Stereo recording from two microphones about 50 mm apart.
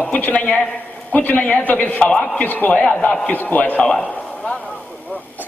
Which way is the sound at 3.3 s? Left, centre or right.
Left.